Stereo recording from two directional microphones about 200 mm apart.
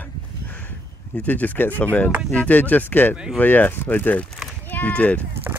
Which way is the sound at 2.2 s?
5° left (ahead or behind).